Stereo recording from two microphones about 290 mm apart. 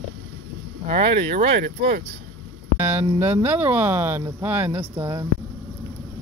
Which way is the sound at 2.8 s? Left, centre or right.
Centre.